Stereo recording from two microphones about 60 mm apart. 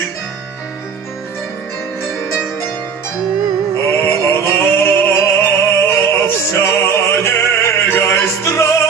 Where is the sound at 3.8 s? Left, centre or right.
Left.